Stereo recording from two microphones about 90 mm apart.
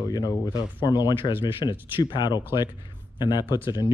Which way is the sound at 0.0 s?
45° left (ahead or behind).